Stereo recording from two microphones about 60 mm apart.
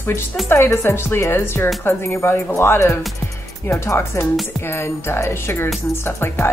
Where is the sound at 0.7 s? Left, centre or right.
Left.